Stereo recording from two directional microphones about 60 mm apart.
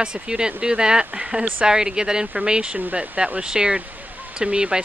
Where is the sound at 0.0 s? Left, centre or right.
Centre.